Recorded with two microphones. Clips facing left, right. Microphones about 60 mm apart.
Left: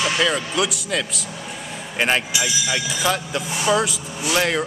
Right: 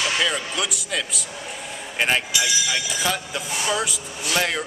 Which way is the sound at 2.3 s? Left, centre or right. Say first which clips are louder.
Even; centre.